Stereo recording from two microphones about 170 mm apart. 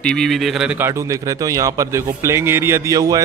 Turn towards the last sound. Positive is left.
turn(degrees=-20)  # may be behind; listen again after turning